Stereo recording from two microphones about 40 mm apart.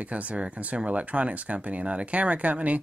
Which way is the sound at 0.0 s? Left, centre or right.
Right.